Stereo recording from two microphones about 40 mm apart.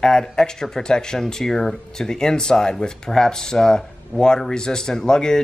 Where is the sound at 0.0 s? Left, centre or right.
Centre.